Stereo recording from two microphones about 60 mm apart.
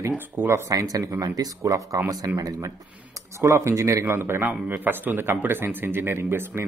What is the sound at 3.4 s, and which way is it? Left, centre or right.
Speech, right.